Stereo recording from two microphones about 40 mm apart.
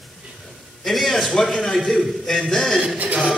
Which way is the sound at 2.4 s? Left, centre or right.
Centre.